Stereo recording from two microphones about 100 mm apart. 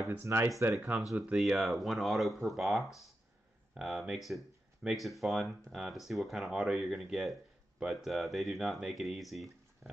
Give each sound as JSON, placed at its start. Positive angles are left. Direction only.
{"t": 0.1, "sound": "speech", "side_deg": -25}